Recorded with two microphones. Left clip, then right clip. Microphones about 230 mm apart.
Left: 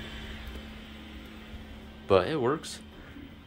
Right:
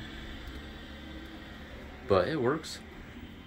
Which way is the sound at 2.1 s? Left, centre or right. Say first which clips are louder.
Left 2 dB; centre.